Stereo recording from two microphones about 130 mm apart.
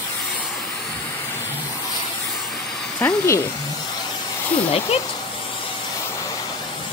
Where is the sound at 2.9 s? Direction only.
20° left (ahead or behind).